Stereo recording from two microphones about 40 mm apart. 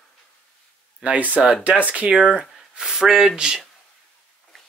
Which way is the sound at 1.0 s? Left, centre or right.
Right.